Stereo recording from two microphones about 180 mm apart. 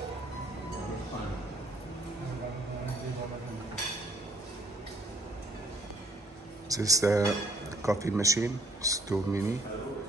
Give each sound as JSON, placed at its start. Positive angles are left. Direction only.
{"t": 6.7, "sound": "speech", "side_deg": -20}